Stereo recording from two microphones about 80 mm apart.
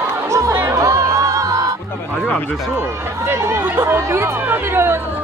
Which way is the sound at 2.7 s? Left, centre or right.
Right.